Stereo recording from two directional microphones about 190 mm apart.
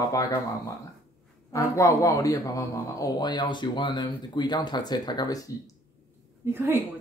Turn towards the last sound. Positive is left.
turn(degrees=-10)  # may be behind; listen again after turning